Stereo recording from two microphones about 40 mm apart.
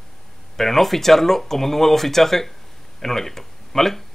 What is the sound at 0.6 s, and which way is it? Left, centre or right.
Speech, centre.